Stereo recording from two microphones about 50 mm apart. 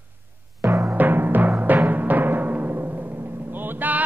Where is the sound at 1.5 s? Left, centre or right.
Right.